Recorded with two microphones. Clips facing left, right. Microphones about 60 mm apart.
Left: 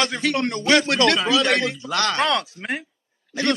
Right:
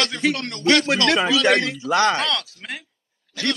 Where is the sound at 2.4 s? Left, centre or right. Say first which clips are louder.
Left 7 dB; left.